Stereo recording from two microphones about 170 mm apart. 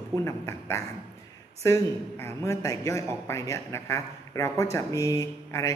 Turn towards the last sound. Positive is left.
turn(degrees=20)  # may be behind; listen again after turning